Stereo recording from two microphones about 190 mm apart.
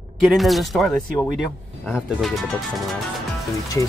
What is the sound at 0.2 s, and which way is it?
Speech, centre (ahead or behind).